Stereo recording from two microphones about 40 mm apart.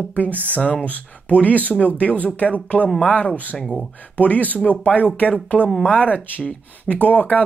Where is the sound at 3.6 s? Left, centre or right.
Centre.